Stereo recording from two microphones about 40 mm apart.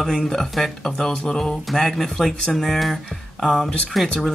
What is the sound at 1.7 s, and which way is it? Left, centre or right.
Speech, centre.